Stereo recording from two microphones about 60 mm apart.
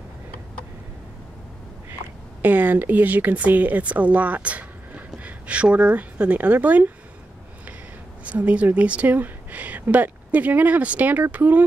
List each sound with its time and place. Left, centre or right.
2.4 s speech: right
8.2 s speech: right